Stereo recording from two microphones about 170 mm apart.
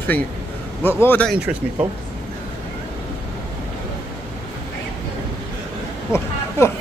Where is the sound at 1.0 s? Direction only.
10° left (ahead or behind).